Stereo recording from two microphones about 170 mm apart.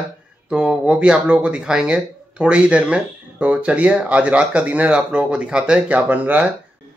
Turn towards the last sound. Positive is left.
turn(degrees=-10)  # may be behind; listen again after turning